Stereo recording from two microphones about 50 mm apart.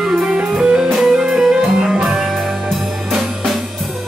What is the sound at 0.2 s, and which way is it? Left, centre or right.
Music, centre.